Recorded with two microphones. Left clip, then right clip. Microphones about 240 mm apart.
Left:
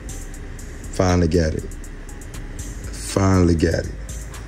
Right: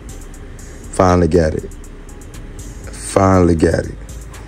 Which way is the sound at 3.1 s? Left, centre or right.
Centre.